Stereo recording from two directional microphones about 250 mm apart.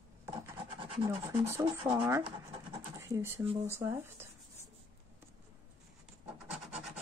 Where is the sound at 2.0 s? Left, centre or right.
Centre.